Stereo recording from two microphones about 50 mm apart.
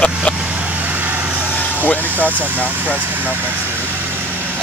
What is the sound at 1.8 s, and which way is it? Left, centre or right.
Speech, left.